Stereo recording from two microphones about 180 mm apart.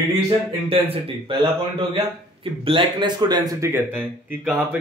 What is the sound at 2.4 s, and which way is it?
A man's voice, 30° right (ahead or behind).